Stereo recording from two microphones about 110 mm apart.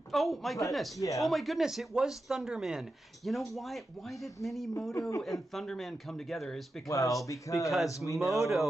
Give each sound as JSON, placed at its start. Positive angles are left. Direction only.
{"t": 0.1, "sound": "speech", "side_deg": 0}
{"t": 0.9, "sound": "speech", "side_deg": 30}
{"t": 1.2, "sound": "speech", "side_deg": 0}
{"t": 6.9, "sound": "speech", "side_deg": 30}
{"t": 8.2, "sound": "speech", "side_deg": 0}